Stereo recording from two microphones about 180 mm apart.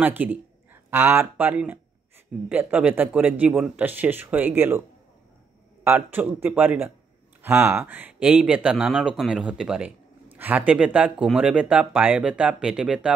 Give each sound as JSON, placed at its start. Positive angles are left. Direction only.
{"t": 0.0, "sound": "speech", "side_deg": -10}
{"t": 5.9, "sound": "speech", "side_deg": -10}